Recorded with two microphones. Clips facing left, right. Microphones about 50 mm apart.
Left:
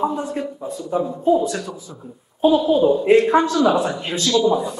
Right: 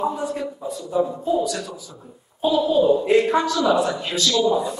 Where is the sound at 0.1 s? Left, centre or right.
Left.